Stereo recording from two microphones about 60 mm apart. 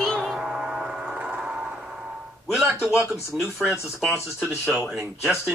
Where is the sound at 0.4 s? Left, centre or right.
Centre.